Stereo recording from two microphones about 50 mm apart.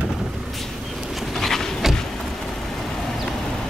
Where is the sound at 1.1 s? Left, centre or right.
Centre.